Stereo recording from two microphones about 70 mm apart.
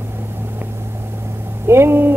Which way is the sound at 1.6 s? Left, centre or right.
Right.